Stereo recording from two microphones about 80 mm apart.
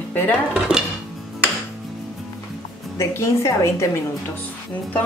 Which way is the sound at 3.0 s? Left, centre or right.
Left.